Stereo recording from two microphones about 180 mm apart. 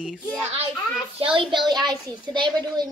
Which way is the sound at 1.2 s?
30° right (ahead or behind).